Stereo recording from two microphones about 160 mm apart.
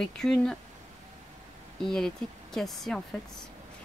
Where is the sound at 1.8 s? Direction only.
5° left (ahead or behind).